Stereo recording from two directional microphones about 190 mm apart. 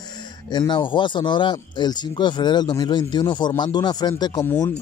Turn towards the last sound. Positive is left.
turn(degrees=10)  # may be behind; listen again after turning